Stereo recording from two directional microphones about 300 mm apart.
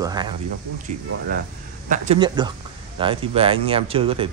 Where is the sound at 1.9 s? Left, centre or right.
Right.